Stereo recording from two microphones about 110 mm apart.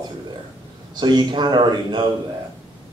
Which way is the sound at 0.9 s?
40° right (ahead or behind).